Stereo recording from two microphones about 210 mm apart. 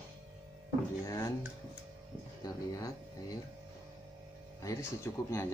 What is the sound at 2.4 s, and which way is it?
Speech, 15° left (ahead or behind).